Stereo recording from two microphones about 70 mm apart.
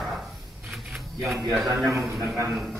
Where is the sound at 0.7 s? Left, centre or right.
Centre.